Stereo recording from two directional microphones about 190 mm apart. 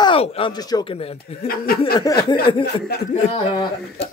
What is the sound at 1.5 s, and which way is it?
Chuckle, 50° left (ahead or behind).